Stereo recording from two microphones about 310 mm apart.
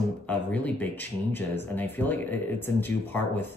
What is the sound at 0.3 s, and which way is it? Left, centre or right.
Speech, centre.